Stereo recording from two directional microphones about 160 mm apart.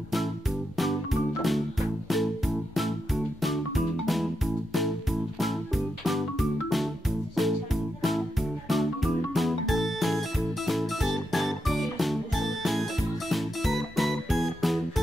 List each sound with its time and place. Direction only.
0.7 s music: centre (ahead or behind)